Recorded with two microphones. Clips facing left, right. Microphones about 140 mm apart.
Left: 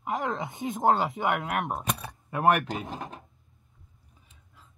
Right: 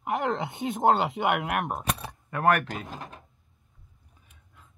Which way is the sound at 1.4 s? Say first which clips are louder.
Right 1 dB; 5° right (ahead or behind).